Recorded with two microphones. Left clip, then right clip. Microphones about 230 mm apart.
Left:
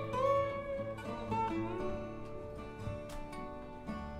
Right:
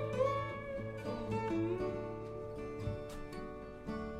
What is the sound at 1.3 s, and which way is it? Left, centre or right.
Music, left.